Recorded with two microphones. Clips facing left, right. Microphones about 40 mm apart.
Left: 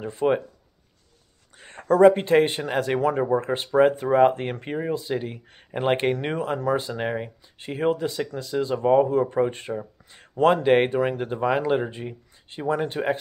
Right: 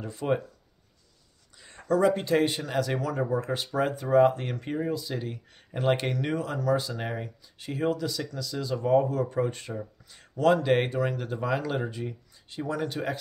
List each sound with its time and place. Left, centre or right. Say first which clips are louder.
0.0 s speech: left 6 dB; left
1.6 s speech: left 8 dB; left